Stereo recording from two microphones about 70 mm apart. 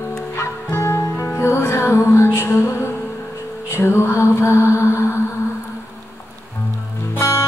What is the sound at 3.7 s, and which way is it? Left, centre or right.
Mantra, left.